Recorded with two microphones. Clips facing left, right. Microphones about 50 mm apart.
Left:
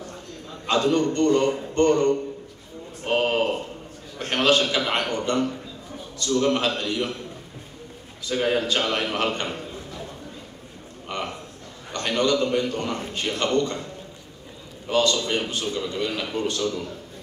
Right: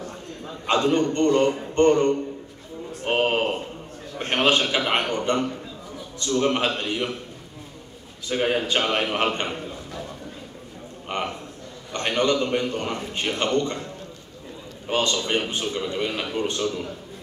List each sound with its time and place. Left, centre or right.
0.7 s a man's voice: right
3.1 s a sound: right
4.2 s a man's voice: right
8.3 s a man's voice: right
11.1 s a man's voice: right
14.9 s a man's voice: right